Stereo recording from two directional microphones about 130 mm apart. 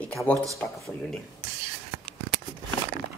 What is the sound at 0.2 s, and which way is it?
Speech, 5° left (ahead or behind).